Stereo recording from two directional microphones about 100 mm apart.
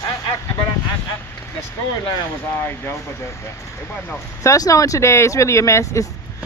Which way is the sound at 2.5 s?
20° left (ahead or behind).